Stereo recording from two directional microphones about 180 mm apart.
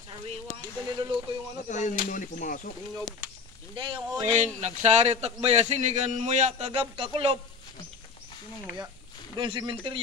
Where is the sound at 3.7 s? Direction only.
25° right (ahead or behind).